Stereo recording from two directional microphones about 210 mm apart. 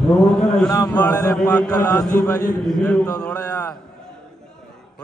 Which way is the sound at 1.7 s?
15° left (ahead or behind).